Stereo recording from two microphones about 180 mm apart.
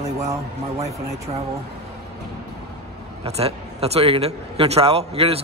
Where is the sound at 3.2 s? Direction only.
35° right (ahead or behind).